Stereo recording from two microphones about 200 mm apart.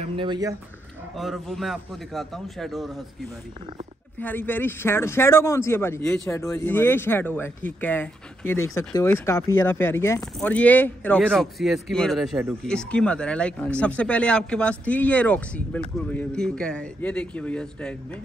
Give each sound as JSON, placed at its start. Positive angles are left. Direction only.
{"t": 0.0, "sound": "speech", "side_deg": -25}
{"t": 1.1, "sound": "speech", "side_deg": 0}